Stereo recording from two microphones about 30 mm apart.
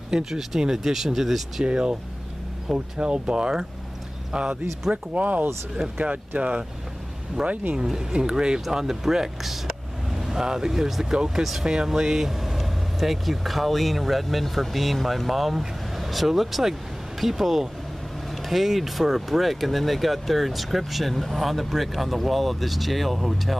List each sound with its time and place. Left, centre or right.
0.2 s speech: centre
1.6 s speech: right
4.9 s speech: right
7.4 s speech: centre
8.2 s speech: right
8.5 s speech: centre
9.4 s speech: centre
10.1 s speech: centre
11.1 s speech: right
12.3 s speech: centre